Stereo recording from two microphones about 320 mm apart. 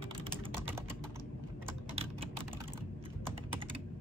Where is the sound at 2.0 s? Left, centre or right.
Centre.